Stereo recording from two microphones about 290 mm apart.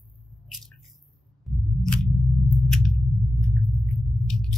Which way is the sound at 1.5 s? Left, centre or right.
Centre.